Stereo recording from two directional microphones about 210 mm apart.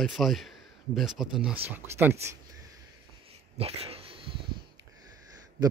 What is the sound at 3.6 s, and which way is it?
Dog, 30° right (ahead or behind).